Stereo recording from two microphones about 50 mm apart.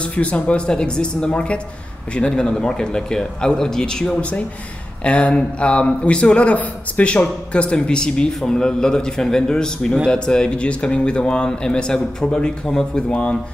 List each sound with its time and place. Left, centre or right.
0.0 s speech: left
4.2 s speech: left